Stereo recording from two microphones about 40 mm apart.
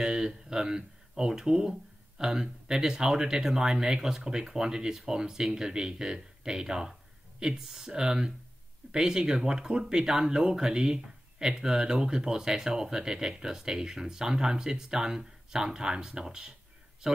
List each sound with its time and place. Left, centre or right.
0.0 s speech: centre